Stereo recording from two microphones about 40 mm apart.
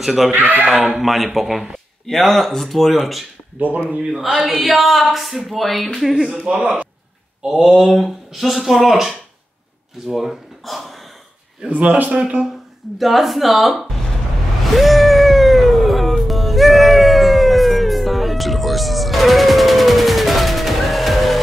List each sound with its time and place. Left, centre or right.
0.0 s speech: centre
0.3 s speech: right
0.9 s speech: centre
2.0 s speech: centre
3.5 s speech: right
4.1 s speech: centre
6.4 s a man's voice: right
7.4 s speech: centre
7.8 s speech: centre
11.7 s a man's voice: right
12.9 s speech: centre
14.8 s music: centre